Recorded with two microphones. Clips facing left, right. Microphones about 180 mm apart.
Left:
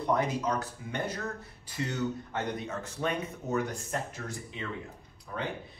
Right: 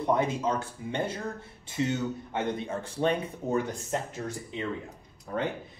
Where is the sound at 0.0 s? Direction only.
25° right (ahead or behind).